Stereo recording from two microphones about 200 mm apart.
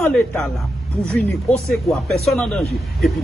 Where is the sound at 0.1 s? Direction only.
5° left (ahead or behind).